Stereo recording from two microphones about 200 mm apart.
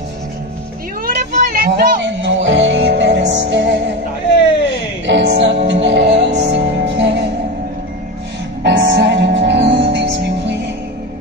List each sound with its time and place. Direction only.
1.0 s a sound: 45° right (ahead or behind)
2.1 s music: 65° right (ahead or behind)
5.0 s music: 65° right (ahead or behind)
8.6 s music: 60° right (ahead or behind)